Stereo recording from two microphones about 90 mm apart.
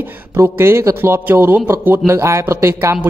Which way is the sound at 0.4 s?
30° right (ahead or behind).